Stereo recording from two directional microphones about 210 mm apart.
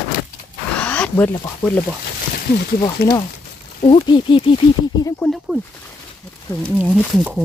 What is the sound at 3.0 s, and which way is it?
Speech, 50° left (ahead or behind).